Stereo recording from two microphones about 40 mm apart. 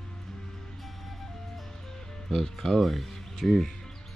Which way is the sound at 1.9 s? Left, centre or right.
Centre.